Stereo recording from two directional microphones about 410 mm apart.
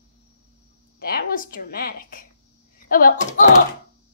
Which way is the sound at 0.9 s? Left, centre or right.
Left.